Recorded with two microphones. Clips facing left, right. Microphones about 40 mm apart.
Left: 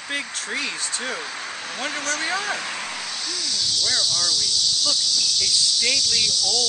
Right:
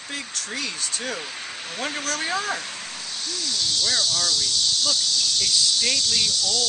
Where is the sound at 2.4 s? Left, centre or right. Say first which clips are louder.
Left 1 dB; left.